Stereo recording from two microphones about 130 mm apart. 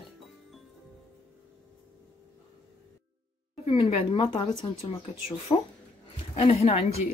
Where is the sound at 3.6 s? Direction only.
45° left (ahead or behind).